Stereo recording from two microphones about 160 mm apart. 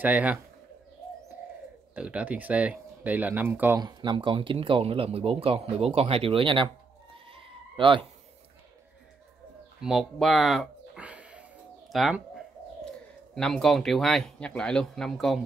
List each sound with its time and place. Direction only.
0.0 s speech: 10° right (ahead or behind)
2.0 s speech: 10° right (ahead or behind)
3.8 s speech: 25° right (ahead or behind)
7.2 s bleat: 35° right (ahead or behind)
9.8 s a sound: centre (ahead or behind)
11.9 s speech: centre (ahead or behind)
13.3 s speech: centre (ahead or behind)